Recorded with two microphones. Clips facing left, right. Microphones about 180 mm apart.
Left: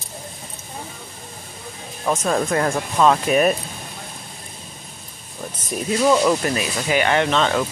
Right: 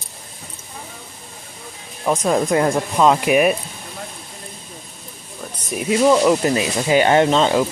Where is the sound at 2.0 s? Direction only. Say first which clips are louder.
Right 3 dB; 15° right (ahead or behind).